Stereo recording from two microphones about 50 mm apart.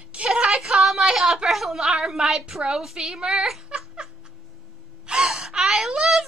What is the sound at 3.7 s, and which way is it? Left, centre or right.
Laughter, right.